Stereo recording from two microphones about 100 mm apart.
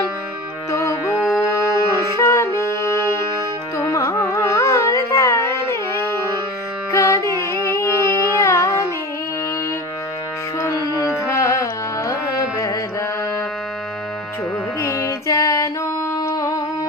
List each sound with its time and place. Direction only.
0.7 s music: 30° left (ahead or behind)
1.1 s music: centre (ahead or behind)
2.1 s music: 30° left (ahead or behind)
3.7 s carnatic music: 30° left (ahead or behind)
6.9 s music: 30° left (ahead or behind)
11.0 s carnatic music: 30° left (ahead or behind)
14.8 s female singing: 35° left (ahead or behind)
16.2 s humming: 40° left (ahead or behind)